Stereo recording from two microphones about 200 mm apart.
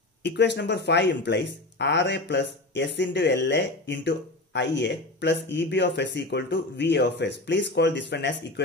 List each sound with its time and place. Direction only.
0.2 s speech: 60° left (ahead or behind)